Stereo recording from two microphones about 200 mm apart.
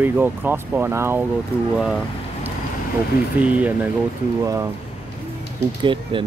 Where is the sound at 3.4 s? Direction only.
10° right (ahead or behind).